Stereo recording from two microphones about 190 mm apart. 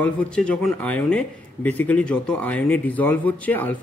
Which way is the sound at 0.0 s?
5° left (ahead or behind).